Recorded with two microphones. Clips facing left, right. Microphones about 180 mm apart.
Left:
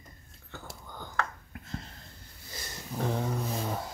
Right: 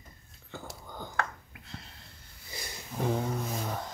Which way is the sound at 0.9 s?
10° right (ahead or behind).